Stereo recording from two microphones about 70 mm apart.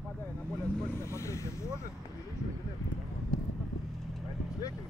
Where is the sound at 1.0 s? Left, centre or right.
Left.